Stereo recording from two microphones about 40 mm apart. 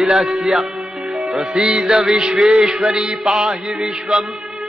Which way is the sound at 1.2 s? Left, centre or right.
Centre.